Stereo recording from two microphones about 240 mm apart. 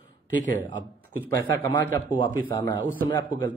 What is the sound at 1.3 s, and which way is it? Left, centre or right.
A man's voice, centre.